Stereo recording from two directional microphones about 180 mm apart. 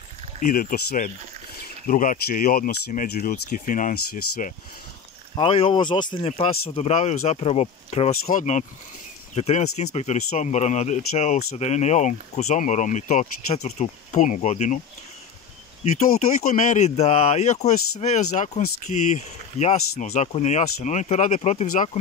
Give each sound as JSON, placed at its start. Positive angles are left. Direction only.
{"t": 0.4, "sound": "speech", "side_deg": 50}
{"t": 5.3, "sound": "speech", "side_deg": 30}
{"t": 16.4, "sound": "speech", "side_deg": 40}